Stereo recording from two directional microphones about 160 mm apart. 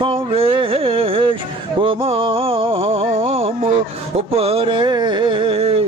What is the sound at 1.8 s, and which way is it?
Music, 35° right (ahead or behind).